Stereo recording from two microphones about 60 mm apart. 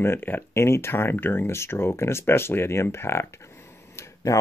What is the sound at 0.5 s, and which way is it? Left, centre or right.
Speech, left.